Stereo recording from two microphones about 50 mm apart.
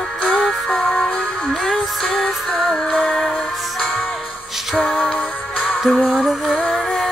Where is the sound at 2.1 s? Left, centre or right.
Centre.